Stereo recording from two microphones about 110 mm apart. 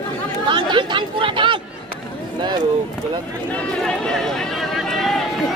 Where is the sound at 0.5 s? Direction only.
45° right (ahead or behind).